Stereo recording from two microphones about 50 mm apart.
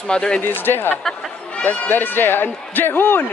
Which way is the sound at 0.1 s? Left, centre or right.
Centre.